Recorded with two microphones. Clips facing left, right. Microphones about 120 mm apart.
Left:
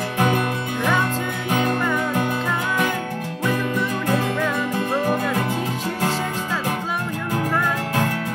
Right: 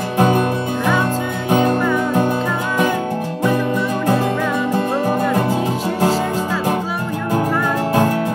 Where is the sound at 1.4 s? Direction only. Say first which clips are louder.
Right 6 dB; 30° right (ahead or behind).